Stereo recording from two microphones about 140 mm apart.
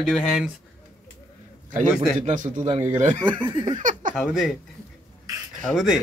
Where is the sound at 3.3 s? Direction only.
35° right (ahead or behind).